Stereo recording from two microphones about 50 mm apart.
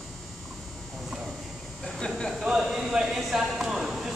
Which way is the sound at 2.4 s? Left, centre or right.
Centre.